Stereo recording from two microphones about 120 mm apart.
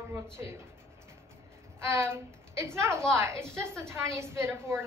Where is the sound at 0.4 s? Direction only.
20° right (ahead or behind).